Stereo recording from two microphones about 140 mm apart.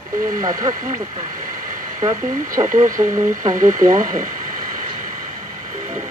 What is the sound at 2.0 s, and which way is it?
Speech, 25° right (ahead or behind).